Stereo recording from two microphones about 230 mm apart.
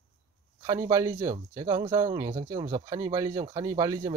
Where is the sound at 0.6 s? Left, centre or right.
Centre.